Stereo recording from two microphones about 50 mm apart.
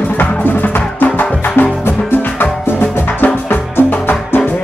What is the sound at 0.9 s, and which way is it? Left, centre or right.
Music, left.